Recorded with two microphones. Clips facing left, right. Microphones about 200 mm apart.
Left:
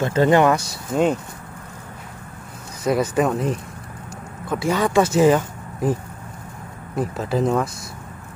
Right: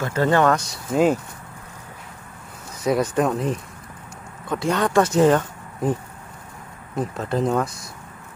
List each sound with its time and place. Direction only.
0.0 s speech: 20° left (ahead or behind)
0.7 s speech: 5° right (ahead or behind)
2.8 s speech: centre (ahead or behind)
7.0 s speech: 5° left (ahead or behind)